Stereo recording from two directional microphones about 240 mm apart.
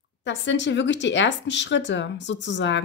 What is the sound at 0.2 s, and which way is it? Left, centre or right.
Speech, left.